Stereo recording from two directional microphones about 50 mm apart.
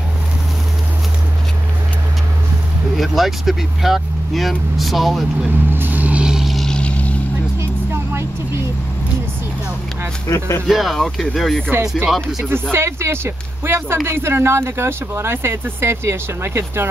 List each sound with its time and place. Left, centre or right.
3.0 s speech: centre
5.7 s vehicle: right
6.4 s vehicle: centre
6.7 s vehicle: left
7.9 s vehicle: right
10.2 s speech: left
10.7 s speech: centre
12.7 s speech: right